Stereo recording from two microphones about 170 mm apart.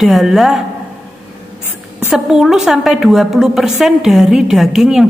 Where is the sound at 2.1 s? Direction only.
Centre (ahead or behind).